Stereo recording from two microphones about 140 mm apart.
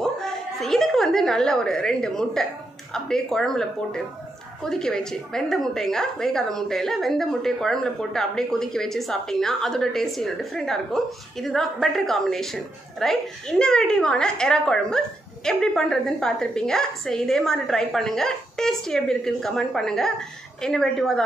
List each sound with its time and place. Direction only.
0.0 s a woman's voice: 5° left (ahead or behind)